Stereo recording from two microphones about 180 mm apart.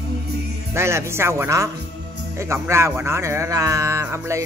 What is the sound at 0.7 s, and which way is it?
Speech, 15° right (ahead or behind).